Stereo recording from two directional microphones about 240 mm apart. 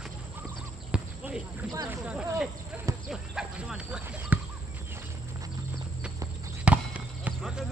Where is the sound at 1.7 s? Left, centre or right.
Centre.